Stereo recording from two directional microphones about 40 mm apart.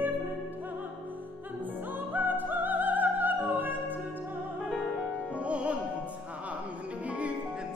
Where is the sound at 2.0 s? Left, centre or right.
Right.